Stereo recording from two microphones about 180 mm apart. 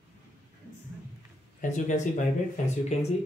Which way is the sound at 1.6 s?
45° left (ahead or behind).